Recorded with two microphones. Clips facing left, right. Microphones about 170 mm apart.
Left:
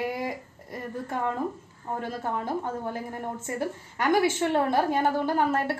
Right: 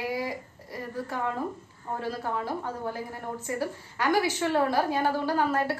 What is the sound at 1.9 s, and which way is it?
Speech, 20° left (ahead or behind).